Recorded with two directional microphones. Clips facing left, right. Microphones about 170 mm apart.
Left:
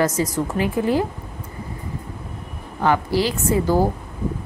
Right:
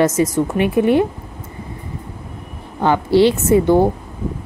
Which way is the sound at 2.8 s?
25° right (ahead or behind).